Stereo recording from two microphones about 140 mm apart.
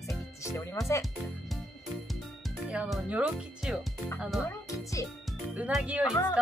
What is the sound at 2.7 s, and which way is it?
Speech, 10° right (ahead or behind).